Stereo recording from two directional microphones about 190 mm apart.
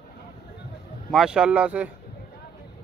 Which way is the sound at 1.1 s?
5° right (ahead or behind).